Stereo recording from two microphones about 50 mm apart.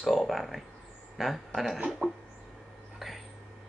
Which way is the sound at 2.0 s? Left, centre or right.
Right.